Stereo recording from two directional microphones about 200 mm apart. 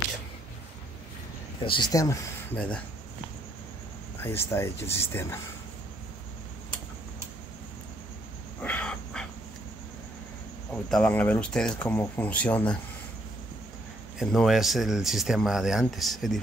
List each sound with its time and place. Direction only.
1.6 s speech: 25° left (ahead or behind)
2.5 s speech: 5° left (ahead or behind)
4.2 s speech: 10° left (ahead or behind)
8.6 s wild animals: 5° left (ahead or behind)
10.9 s speech: 5° left (ahead or behind)
14.1 s speech: centre (ahead or behind)